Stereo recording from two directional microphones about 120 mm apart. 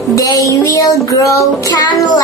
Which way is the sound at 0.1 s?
30° left (ahead or behind).